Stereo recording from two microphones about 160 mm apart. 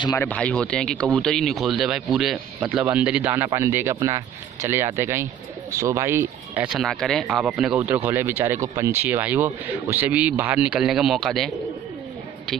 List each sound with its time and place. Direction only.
0.2 s speech: 10° left (ahead or behind)